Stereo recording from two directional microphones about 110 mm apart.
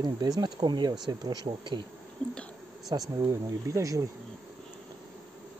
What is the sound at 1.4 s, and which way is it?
Speech, 45° right (ahead or behind).